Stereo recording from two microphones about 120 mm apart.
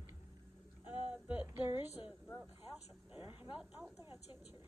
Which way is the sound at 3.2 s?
15° right (ahead or behind).